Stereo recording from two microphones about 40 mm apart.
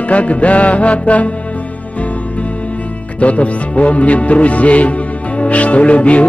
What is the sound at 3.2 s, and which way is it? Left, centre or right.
Music, left.